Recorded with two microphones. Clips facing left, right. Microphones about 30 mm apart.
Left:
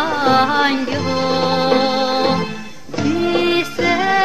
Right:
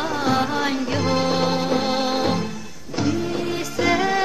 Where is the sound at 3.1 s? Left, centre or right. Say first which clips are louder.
Left 9 dB; left.